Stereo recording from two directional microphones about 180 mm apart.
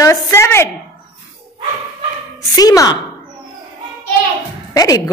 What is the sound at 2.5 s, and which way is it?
Speech, 20° left (ahead or behind).